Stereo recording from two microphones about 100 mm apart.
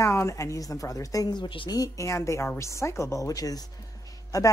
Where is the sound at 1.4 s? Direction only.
55° left (ahead or behind).